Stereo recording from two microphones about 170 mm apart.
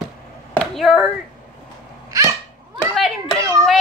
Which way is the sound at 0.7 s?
Centre (ahead or behind).